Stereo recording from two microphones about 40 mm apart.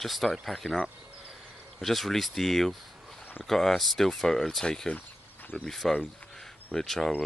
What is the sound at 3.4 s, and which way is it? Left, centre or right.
Speech, centre.